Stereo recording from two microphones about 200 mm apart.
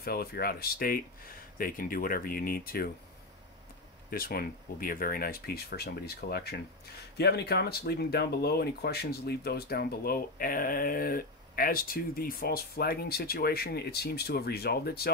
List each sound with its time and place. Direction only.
0.0 s speech: 50° left (ahead or behind)
4.1 s speech: 45° left (ahead or behind)